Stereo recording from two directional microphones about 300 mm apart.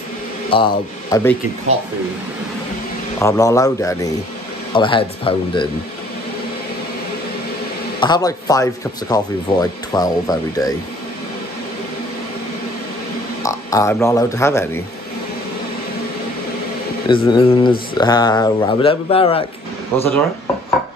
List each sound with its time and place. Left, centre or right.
0.5 s speech: centre
3.2 s speech: centre
8.0 s speech: centre
13.4 s speech: centre
17.1 s speech: centre
19.9 s speech: centre